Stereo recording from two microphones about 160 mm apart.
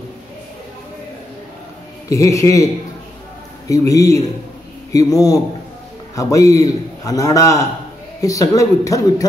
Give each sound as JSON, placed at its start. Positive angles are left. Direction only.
{"t": 2.0, "sound": "a man's voice", "side_deg": 20}